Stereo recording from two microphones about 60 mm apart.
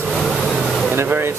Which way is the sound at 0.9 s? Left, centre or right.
Right.